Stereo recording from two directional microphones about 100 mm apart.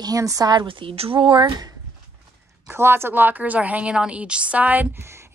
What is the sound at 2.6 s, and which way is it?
A woman's voice, 25° right (ahead or behind).